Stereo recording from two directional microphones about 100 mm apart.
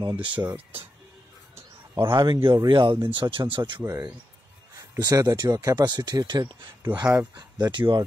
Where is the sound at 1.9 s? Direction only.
35° right (ahead or behind).